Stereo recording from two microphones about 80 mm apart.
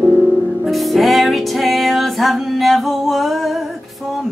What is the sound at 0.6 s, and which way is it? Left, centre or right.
Music, centre.